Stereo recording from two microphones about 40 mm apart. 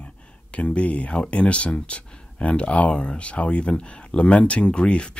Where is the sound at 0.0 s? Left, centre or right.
Left.